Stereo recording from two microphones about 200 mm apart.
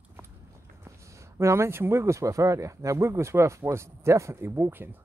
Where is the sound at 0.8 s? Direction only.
15° right (ahead or behind).